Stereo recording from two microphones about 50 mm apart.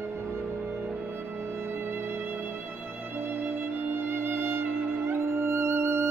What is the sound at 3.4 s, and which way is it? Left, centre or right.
Music, right.